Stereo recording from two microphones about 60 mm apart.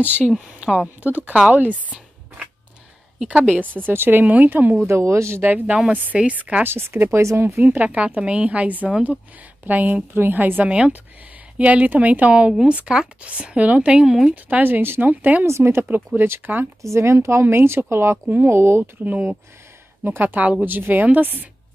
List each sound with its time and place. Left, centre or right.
0.0 s speech: right
3.2 s a woman's voice: centre
3.4 s a woman's voice: right
4.8 s speech: right
5.4 s a woman's voice: right
6.6 s speech: right
7.6 s a woman's voice: right
14.0 s speech: centre
14.3 s speech: right
15.4 s speech: right
16.2 s a woman's voice: right
16.8 s speech: right
19.0 s a woman's voice: right